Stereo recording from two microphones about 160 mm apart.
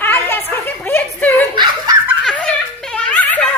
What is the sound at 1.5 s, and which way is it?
Snicker, 25° right (ahead or behind).